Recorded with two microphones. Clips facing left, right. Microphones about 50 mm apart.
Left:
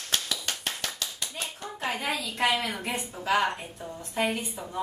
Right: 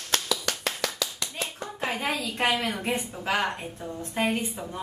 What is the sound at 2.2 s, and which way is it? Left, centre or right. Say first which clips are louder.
A woman's voice: even; right.